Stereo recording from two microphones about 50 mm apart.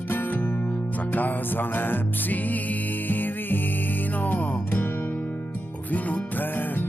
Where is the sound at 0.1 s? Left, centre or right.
Left.